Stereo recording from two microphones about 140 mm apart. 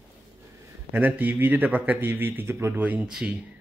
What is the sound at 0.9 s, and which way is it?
A man's voice, 15° right (ahead or behind).